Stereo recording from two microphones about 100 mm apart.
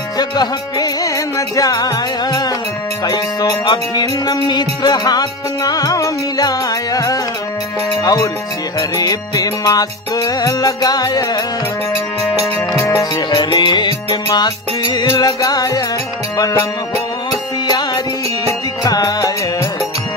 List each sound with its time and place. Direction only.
0.2 s music: 45° left (ahead or behind)
3.9 s music: 45° left (ahead or behind)
8.0 s speech: 35° left (ahead or behind)
9.0 s music: 40° left (ahead or behind)
12.7 s music: 25° left (ahead or behind)
13.3 s music: 50° left (ahead or behind)
17.6 s music: 45° left (ahead or behind)